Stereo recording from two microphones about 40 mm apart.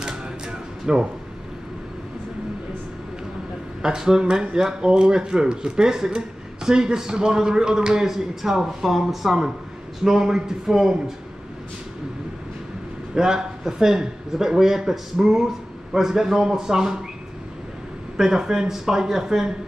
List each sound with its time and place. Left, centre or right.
0.0 s a sound: right
3.8 s speech: centre
13.1 s speech: centre
18.1 s speech: centre